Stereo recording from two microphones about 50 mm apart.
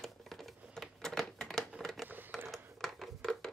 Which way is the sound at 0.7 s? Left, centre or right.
Centre.